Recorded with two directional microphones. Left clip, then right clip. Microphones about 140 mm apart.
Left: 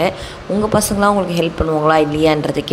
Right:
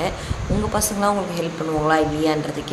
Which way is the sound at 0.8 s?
45° left (ahead or behind).